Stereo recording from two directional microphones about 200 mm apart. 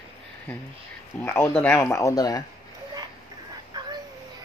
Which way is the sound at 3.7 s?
20° right (ahead or behind).